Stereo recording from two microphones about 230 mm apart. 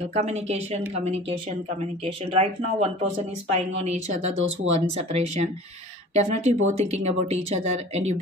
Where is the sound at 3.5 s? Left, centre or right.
Right.